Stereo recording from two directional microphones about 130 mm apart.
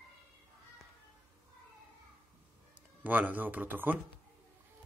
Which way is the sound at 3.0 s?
15° right (ahead or behind).